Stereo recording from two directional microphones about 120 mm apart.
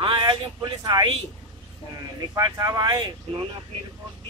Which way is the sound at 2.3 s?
30° right (ahead or behind).